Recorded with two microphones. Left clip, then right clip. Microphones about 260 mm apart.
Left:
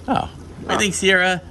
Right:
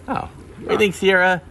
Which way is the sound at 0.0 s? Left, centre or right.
Centre.